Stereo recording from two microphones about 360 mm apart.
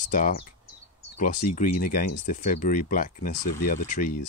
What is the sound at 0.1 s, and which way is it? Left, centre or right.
Speech, left.